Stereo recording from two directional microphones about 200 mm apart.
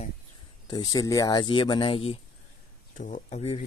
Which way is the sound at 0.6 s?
20° left (ahead or behind).